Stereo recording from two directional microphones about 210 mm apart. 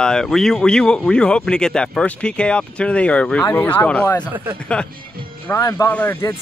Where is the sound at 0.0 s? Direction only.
5° left (ahead or behind).